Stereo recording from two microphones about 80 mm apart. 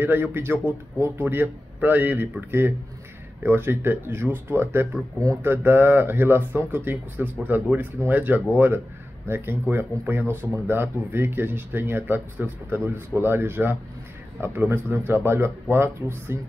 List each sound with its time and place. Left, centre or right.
0.0 s speech: right